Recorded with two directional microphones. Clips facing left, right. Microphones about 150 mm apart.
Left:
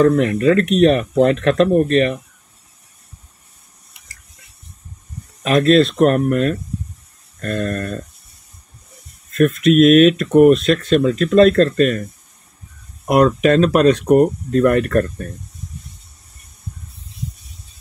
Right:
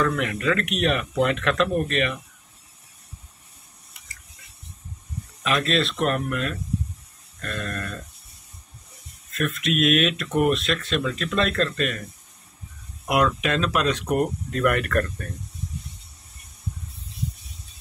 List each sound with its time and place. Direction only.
0.0 s speech: 35° left (ahead or behind)
5.4 s speech: 40° left (ahead or behind)
9.3 s speech: 45° left (ahead or behind)